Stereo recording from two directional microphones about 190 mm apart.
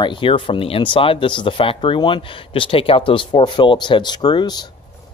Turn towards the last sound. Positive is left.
turn(degrees=20)  # may be behind; listen again after turning